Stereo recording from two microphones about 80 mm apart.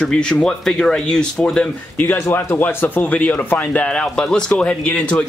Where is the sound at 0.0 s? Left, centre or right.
Centre.